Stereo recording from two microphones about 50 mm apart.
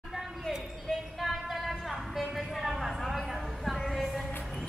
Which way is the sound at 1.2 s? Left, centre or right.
Centre.